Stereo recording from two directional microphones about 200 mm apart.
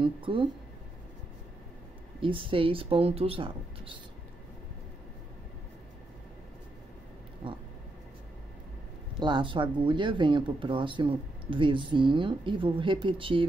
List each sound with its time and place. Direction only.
0.0 s speech: 25° right (ahead or behind)
2.2 s speech: 25° right (ahead or behind)
9.2 s speech: 25° right (ahead or behind)